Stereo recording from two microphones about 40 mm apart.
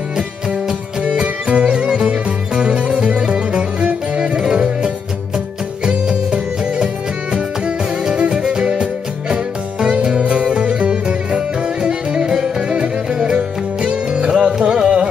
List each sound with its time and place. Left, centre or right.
1.0 s music: right
8.1 s music: right